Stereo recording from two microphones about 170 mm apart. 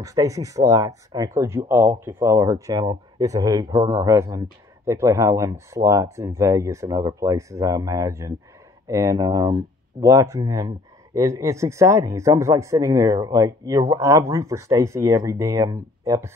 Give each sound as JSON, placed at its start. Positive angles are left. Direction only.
{"t": 0.0, "sound": "speech", "side_deg": -20}